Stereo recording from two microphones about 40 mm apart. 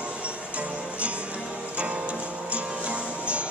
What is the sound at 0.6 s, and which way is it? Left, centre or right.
Music, right.